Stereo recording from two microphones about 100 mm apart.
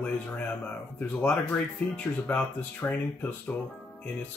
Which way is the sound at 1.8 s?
10° left (ahead or behind).